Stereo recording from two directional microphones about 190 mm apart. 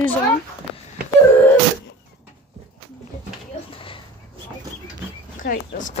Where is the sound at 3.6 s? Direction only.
30° left (ahead or behind).